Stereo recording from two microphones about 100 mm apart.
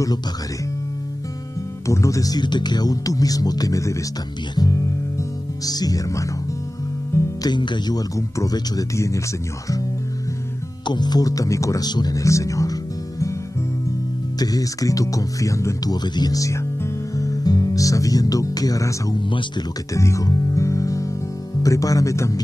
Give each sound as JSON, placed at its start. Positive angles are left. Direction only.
{"t": 1.9, "sound": "speech", "side_deg": 30}
{"t": 4.6, "sound": "music", "side_deg": 35}
{"t": 5.7, "sound": "speech", "side_deg": 40}
{"t": 7.1, "sound": "music", "side_deg": 25}
{"t": 7.4, "sound": "speech", "side_deg": 50}
{"t": 10.9, "sound": "speech", "side_deg": 45}
{"t": 14.4, "sound": "speech", "side_deg": 35}
{"t": 17.2, "sound": "music", "side_deg": 35}
{"t": 19.1, "sound": "speech", "side_deg": 50}
{"t": 19.9, "sound": "speech", "side_deg": 30}